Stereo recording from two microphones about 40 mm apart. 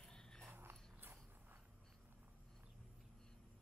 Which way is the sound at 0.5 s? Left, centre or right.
Right.